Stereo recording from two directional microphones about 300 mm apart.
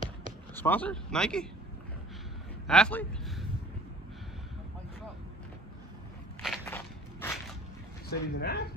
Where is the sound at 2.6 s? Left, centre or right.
Centre.